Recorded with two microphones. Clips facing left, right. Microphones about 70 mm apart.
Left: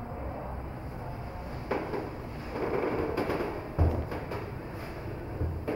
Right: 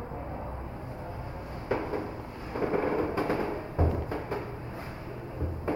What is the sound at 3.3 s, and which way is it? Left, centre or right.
Music, right.